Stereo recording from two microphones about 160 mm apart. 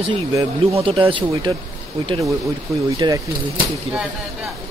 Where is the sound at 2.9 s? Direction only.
25° right (ahead or behind).